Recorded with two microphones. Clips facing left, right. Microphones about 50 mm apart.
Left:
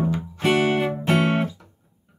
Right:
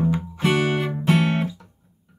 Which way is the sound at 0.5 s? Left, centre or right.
Left.